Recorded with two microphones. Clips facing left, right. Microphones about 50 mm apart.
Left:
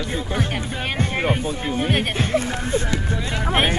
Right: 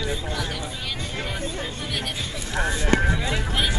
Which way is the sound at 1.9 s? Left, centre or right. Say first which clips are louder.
Left 9 dB; left.